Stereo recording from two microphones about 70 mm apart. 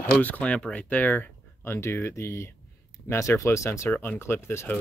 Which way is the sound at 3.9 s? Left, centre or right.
Left.